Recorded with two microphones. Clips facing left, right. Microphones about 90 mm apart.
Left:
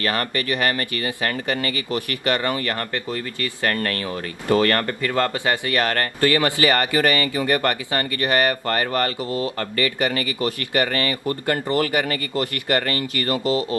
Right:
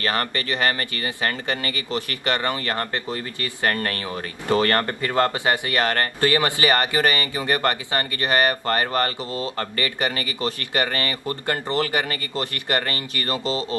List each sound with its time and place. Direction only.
0.0 s speech: 30° right (ahead or behind)
1.9 s speech: 25° right (ahead or behind)